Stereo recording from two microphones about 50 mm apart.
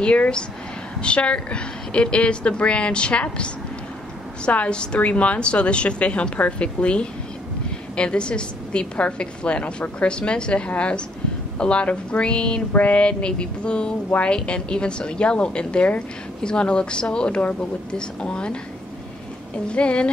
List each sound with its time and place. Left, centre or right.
0.0 s a woman's voice: left
19.7 s a woman's voice: left